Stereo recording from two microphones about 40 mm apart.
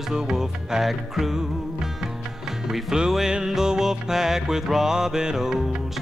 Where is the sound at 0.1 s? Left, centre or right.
Centre.